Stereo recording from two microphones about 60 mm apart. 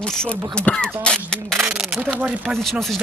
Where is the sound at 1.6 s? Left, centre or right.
Centre.